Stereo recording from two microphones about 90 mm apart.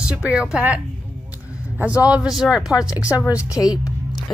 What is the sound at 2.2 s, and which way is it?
Speech, 10° right (ahead or behind).